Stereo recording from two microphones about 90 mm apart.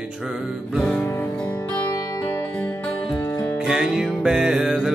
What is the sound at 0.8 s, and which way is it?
Music, 10° left (ahead or behind).